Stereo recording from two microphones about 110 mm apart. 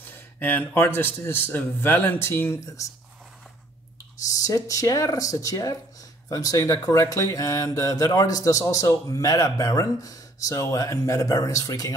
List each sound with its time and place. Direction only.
0.1 s a man's voice: 20° left (ahead or behind)
4.2 s speech: 30° left (ahead or behind)